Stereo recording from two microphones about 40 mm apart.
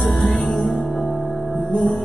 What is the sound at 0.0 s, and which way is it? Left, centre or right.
Music, centre.